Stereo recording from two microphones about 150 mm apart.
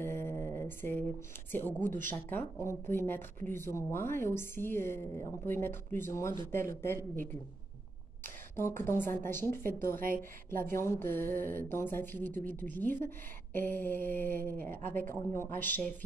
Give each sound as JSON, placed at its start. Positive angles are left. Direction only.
{"t": 0.0, "sound": "mantra", "side_deg": 15}
{"t": 1.5, "sound": "speech", "side_deg": 10}
{"t": 8.5, "sound": "speech", "side_deg": 15}